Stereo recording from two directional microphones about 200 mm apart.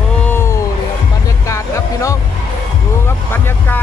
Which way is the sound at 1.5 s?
15° left (ahead or behind).